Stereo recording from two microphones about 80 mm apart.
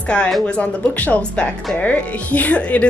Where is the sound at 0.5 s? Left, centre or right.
Centre.